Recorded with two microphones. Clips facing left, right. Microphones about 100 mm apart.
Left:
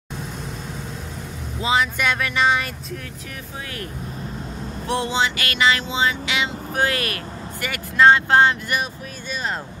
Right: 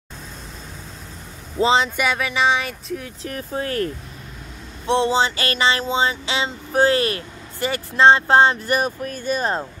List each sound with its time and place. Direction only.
1.6 s speech: 30° right (ahead or behind)
2.0 s speech: 5° right (ahead or behind)
3.3 s speech: 40° right (ahead or behind)
4.8 s speech: 30° right (ahead or behind); by 9.5 s 45° right (ahead or behind)